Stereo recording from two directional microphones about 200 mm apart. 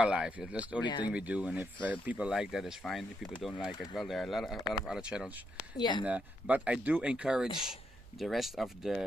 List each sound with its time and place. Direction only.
0.0 s speech: 5° right (ahead or behind)
0.8 s speech: 25° left (ahead or behind)
1.1 s speech: 5° right (ahead or behind)
5.8 s speech: 20° left (ahead or behind)
6.0 s speech: 5° right (ahead or behind)